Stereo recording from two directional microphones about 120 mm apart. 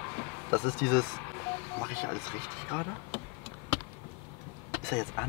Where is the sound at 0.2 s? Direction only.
20° left (ahead or behind).